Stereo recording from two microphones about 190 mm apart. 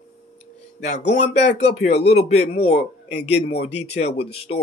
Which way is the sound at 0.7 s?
40° left (ahead or behind).